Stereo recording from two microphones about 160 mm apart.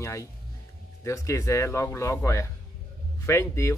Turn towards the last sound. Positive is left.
turn(degrees=15)  # may be behind; listen again after turning